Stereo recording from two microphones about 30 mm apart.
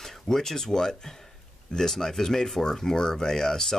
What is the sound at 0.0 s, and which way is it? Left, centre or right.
Speech, centre.